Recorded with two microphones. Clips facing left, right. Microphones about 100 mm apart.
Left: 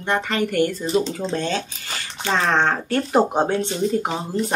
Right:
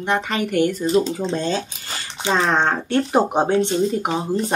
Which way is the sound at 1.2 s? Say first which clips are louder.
Right 1 dB; 20° right (ahead or behind).